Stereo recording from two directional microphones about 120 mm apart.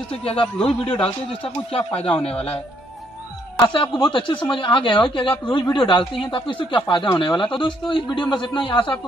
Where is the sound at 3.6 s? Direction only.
45° left (ahead or behind).